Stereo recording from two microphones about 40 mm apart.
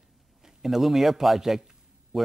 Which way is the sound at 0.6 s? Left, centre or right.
Centre.